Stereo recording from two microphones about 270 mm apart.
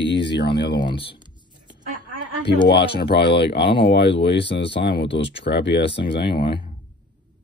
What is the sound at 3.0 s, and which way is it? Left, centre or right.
Speech, left.